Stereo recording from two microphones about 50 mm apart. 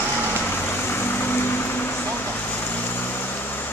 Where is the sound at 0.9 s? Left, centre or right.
Left.